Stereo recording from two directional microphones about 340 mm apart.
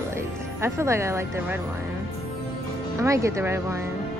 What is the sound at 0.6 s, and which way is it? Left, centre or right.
Speech, centre.